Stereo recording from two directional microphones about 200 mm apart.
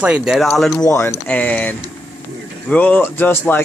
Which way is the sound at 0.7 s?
15° left (ahead or behind).